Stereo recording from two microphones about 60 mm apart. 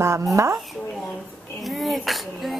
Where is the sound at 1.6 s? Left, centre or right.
Centre.